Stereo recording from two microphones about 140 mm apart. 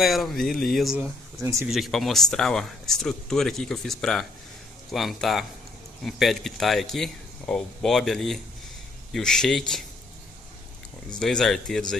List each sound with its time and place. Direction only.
0.0 s speech: centre (ahead or behind)
1.4 s speech: 20° right (ahead or behind)
1.7 s speech: centre (ahead or behind)
11.1 s speech: 5° left (ahead or behind)